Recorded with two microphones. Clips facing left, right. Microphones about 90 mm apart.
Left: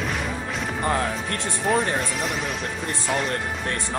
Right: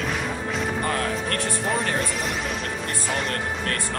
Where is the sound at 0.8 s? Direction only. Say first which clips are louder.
Left 1 dB; 20° left (ahead or behind).